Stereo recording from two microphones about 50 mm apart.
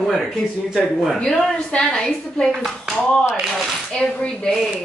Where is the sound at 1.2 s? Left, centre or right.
Centre.